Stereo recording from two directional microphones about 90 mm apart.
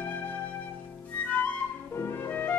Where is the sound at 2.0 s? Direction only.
25° left (ahead or behind).